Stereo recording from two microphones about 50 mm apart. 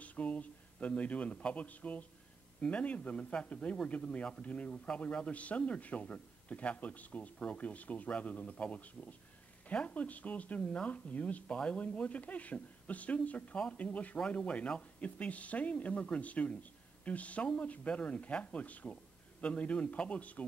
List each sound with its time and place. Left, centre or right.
0.0 s speech: left
11.5 s speech: centre